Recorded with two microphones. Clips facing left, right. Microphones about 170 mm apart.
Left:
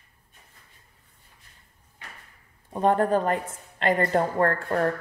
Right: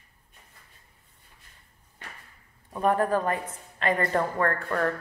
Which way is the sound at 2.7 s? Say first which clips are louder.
Left 2 dB; 30° left (ahead or behind).